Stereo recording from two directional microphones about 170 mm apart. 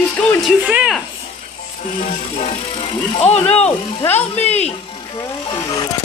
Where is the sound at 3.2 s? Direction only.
40° left (ahead or behind).